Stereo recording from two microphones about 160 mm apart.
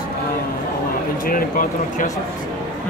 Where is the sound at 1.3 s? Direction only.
60° left (ahead or behind).